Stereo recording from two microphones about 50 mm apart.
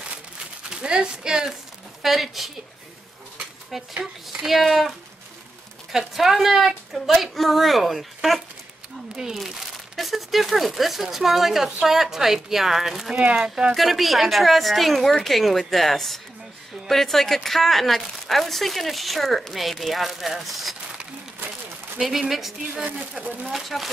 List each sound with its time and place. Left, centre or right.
0.7 s a woman's voice: centre
2.0 s speech: centre
3.7 s speech: centre
21.9 s speech: centre
23.2 s a woman's voice: centre
23.5 s speech: centre